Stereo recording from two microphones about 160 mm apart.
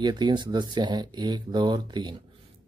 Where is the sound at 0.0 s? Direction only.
25° right (ahead or behind).